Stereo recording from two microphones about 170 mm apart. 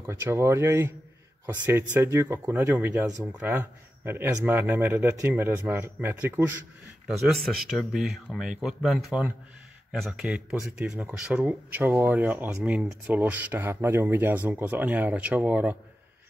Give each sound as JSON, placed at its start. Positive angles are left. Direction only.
{"t": 0.0, "sound": "speech", "side_deg": -15}
{"t": 7.1, "sound": "speech", "side_deg": 0}